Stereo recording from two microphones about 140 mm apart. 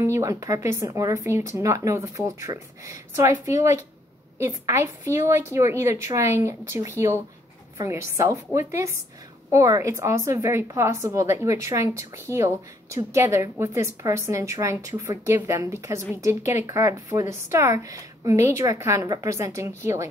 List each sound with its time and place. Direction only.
0.0 s a woman's voice: 20° right (ahead or behind)